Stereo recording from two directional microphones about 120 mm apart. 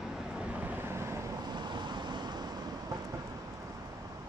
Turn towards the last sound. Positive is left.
turn(degrees=-30)  # may be behind; listen again after turning